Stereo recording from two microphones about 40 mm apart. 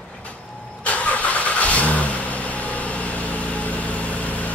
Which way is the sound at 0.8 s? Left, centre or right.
Left.